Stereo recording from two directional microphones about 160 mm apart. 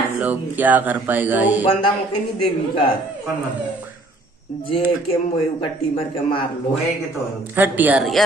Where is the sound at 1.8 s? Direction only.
30° left (ahead or behind).